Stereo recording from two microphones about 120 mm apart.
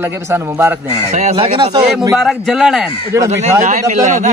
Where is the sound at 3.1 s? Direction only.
25° right (ahead or behind).